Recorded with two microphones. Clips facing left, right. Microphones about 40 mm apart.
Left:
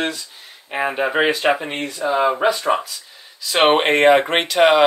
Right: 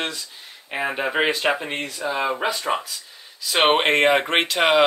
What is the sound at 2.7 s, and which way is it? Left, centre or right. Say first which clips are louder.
Speech: left 4 dB; centre.